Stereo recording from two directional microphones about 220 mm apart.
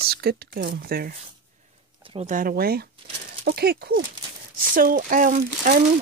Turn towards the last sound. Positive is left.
turn(degrees=-40)  # may be behind; listen again after turning